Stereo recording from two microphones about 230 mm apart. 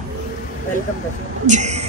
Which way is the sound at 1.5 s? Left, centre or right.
Right.